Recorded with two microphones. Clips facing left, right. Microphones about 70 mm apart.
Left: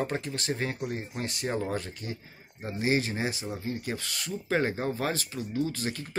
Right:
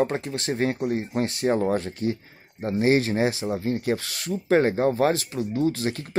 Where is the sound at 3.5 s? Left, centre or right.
Right.